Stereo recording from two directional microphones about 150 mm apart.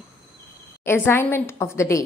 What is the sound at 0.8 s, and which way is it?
A woman's voice, 15° left (ahead or behind).